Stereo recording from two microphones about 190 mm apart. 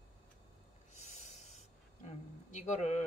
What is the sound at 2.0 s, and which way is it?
Speech, 35° left (ahead or behind).